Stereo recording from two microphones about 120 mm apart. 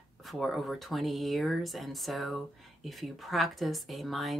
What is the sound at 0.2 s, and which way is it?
Speech, centre (ahead or behind).